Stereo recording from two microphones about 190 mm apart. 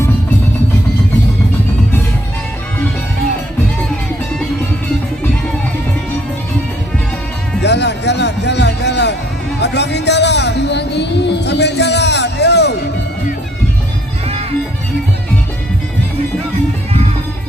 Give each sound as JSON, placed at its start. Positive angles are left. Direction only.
{"t": 7.6, "sound": "music", "side_deg": 65}